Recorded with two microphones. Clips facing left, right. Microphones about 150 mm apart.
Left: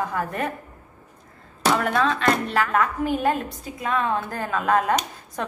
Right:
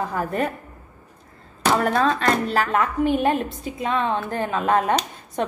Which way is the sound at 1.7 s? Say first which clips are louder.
Right 3 dB; 40° right (ahead or behind).